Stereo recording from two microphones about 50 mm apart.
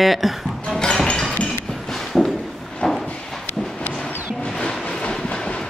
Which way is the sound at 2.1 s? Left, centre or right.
Centre.